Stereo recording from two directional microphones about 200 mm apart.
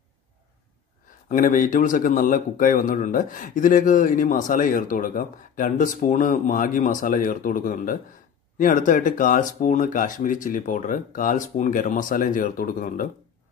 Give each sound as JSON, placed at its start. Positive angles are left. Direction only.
{"t": 1.3, "sound": "a man's voice", "side_deg": 40}